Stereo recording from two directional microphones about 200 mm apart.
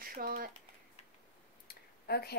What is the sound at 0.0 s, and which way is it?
Speech, 45° right (ahead or behind).